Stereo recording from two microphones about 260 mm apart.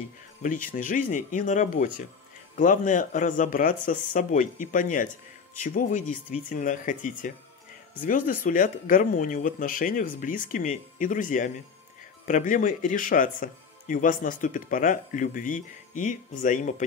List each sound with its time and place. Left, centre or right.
0.4 s speech: left